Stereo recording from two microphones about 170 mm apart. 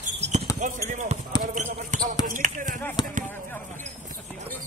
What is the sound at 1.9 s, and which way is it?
Basketball bounce, 45° right (ahead or behind).